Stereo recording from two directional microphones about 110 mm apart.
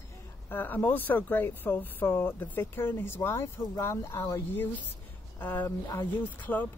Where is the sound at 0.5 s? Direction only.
20° left (ahead or behind).